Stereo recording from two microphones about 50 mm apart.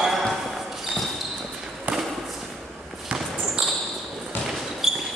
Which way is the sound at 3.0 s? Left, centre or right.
Centre.